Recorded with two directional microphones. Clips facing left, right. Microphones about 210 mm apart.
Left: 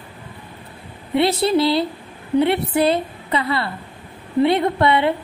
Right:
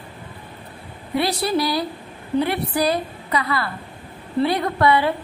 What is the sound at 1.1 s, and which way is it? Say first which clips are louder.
A woman's voice: left 4 dB; 25° left (ahead or behind).